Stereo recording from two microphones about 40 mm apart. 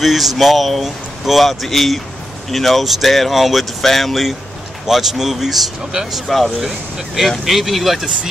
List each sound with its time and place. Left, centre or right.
0.0 s speech: centre